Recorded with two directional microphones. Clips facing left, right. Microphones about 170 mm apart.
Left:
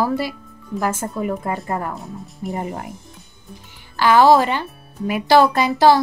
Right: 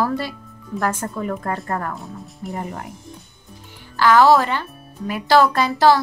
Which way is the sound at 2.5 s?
20° left (ahead or behind).